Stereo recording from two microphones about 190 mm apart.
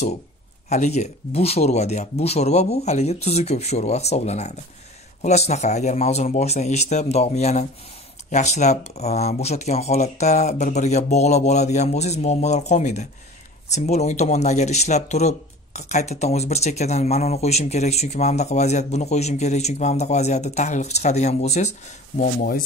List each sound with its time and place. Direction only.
0.7 s speech: 35° left (ahead or behind)